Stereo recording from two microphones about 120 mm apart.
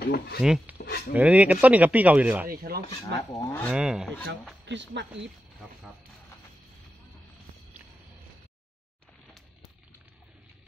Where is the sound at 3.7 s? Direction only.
5° right (ahead or behind).